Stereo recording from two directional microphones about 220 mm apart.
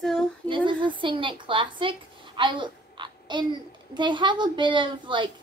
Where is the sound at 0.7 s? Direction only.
20° right (ahead or behind).